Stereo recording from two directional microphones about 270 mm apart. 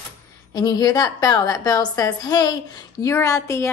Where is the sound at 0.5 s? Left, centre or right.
Centre.